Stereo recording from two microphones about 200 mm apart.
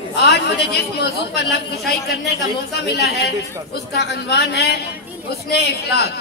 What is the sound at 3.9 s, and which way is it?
A woman's voice, 55° left (ahead or behind).